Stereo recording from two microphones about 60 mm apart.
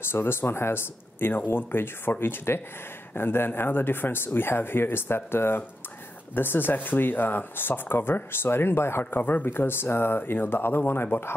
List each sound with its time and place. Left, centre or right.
0.1 s speech: left
9.0 s speech: left